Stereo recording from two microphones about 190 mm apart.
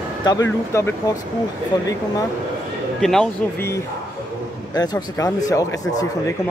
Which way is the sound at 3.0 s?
Centre (ahead or behind).